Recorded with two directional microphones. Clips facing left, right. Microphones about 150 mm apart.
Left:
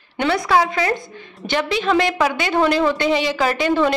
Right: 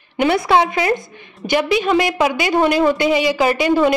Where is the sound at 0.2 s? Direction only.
25° right (ahead or behind).